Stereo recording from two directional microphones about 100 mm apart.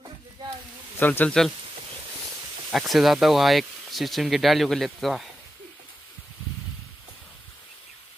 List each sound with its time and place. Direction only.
0.9 s speech: 20° left (ahead or behind)
2.7 s speech: centre (ahead or behind)